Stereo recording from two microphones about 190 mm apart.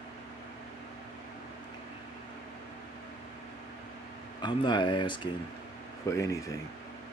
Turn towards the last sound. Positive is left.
turn(degrees=15)  # may be behind; listen again after turning